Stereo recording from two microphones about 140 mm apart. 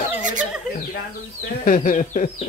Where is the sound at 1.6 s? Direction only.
70° left (ahead or behind).